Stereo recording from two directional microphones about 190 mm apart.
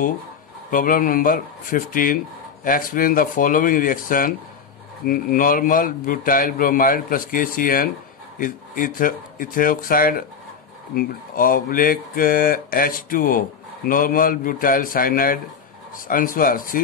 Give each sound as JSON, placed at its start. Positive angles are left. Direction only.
{"t": 0.7, "sound": "speech", "side_deg": 45}